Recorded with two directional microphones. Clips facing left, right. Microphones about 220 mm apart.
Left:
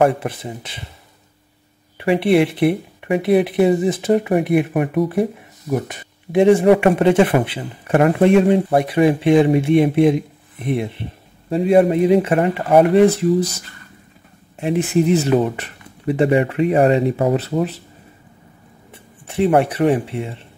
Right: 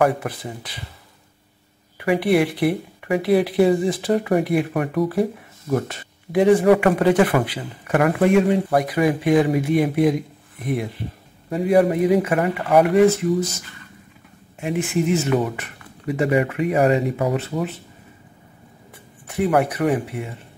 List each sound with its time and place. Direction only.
0.0 s speech: 25° left (ahead or behind)
2.0 s speech: 25° left (ahead or behind)
14.6 s speech: 35° left (ahead or behind)
19.2 s speech: 25° left (ahead or behind)